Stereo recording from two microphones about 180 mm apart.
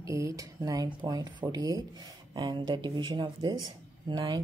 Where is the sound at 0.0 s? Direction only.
15° right (ahead or behind).